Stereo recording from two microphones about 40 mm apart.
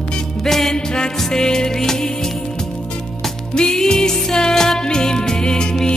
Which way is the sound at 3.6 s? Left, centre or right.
Centre.